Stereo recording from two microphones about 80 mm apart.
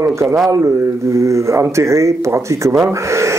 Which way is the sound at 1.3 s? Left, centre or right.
Right.